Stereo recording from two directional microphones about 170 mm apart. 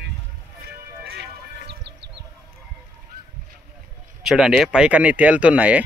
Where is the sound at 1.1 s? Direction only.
80° right.